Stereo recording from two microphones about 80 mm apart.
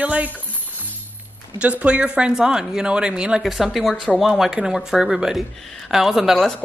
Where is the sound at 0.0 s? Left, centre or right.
Centre.